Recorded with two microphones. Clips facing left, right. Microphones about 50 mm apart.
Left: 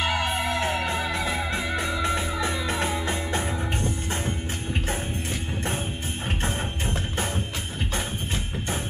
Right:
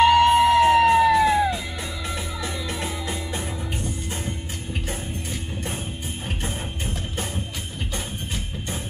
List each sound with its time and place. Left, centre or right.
0.0 s music: left
0.5 s music: left
1.1 s music: centre